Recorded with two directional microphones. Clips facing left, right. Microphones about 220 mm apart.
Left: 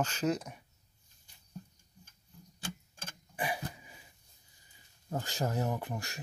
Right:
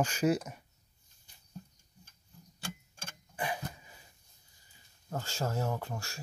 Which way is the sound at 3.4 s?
10° left (ahead or behind).